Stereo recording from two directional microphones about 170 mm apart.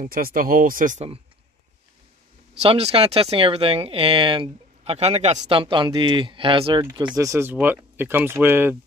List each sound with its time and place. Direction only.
0.0 s speech: 55° right (ahead or behind); by 1.2 s 40° right (ahead or behind)
2.6 s speech: 35° right (ahead or behind)
7.2 s speech: 15° right (ahead or behind)